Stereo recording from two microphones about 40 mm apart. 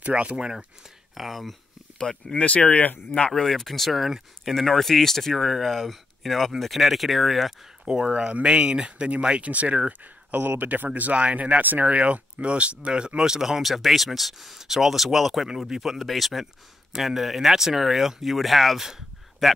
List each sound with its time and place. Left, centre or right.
0.0 s speech: right
1.1 s speech: centre
2.0 s speech: centre
2.3 s speech: left
3.3 s speech: centre
7.8 s speech: right
13.4 s speech: centre